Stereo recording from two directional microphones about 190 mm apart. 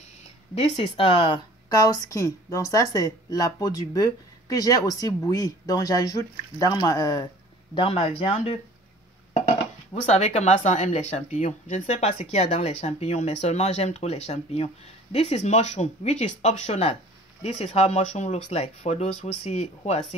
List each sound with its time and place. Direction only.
0.6 s speech: 30° left (ahead or behind)
10.0 s speech: 35° left (ahead or behind)